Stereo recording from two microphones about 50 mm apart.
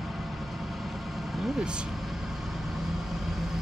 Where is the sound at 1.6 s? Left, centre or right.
Centre.